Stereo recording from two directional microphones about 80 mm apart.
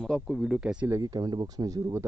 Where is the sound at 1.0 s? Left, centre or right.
Right.